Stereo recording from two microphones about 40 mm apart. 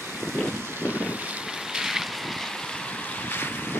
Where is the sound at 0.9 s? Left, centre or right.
Right.